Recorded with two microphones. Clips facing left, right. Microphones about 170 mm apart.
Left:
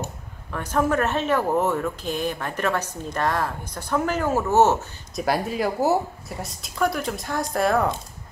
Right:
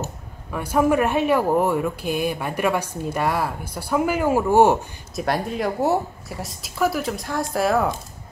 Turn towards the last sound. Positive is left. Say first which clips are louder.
# right 1 dB
turn(degrees=0)  # may be behind; listen again after turning